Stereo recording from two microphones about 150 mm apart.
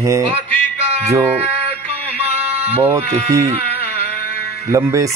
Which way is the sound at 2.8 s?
15° right (ahead or behind).